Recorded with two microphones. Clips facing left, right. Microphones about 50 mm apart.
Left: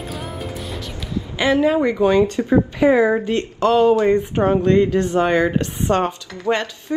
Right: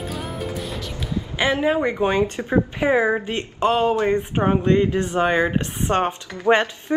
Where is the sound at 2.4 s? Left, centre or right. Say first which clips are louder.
Left 5 dB; centre.